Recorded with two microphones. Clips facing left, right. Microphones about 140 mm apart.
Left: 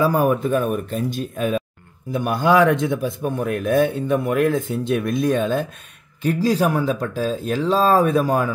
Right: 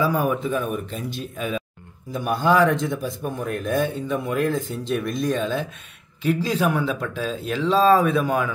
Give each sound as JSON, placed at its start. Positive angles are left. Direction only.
{"t": 0.0, "sound": "speech", "side_deg": 45}
{"t": 2.1, "sound": "speech", "side_deg": 55}